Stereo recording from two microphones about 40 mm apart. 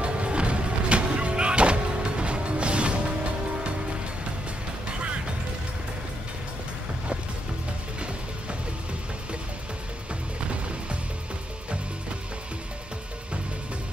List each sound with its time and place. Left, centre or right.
0.0 s music: right